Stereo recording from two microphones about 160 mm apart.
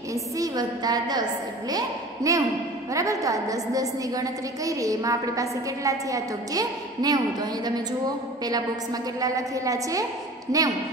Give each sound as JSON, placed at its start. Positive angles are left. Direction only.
{"t": 0.1, "sound": "a woman's voice", "side_deg": -25}
{"t": 9.2, "sound": "a woman's voice", "side_deg": -20}